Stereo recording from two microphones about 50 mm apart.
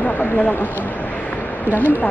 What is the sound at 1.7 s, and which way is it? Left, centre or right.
Speech, left.